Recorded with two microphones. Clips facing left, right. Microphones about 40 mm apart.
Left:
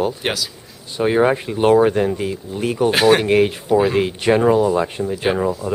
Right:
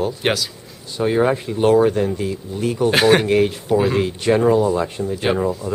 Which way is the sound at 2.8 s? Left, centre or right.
Centre.